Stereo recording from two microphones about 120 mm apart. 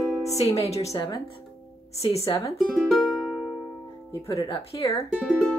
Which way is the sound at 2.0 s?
55° left (ahead or behind).